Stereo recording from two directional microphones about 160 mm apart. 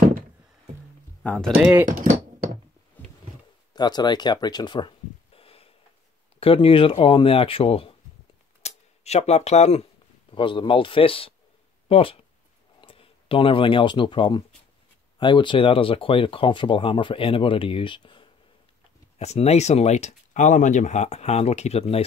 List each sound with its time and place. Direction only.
1.2 s speech: 5° left (ahead or behind)
1.6 s speech: 10° right (ahead or behind)
3.7 s speech: 25° left (ahead or behind); by 9.8 s 45° left (ahead or behind)
10.3 s speech: 30° left (ahead or behind)
19.1 s speech: 40° left (ahead or behind)